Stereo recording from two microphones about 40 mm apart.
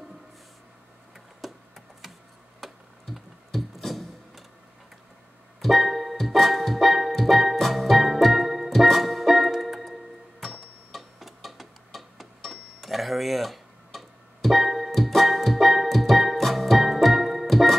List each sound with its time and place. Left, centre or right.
1.4 s a sound: centre
2.6 s a sound: centre
5.6 s organ: centre
7.5 s music: centre
10.9 s clock: centre
12.4 s tick-tock: centre